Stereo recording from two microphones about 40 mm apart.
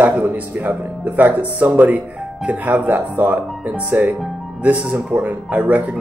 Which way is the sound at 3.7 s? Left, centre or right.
Right.